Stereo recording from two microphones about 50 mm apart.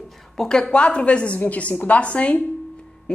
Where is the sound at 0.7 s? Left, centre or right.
Left.